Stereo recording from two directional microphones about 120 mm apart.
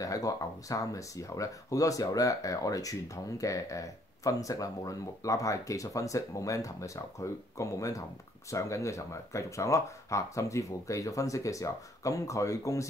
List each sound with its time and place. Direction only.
0.0 s speech: 30° left (ahead or behind)